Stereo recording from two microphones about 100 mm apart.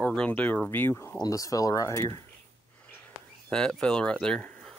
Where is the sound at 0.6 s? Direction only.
25° left (ahead or behind).